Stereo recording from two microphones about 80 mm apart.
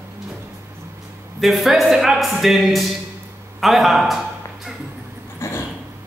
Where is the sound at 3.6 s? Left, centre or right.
Centre.